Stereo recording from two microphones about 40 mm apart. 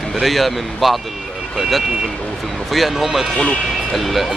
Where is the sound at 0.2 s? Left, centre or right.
Centre.